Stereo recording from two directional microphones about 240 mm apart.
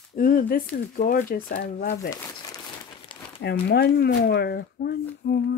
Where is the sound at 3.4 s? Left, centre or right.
Left.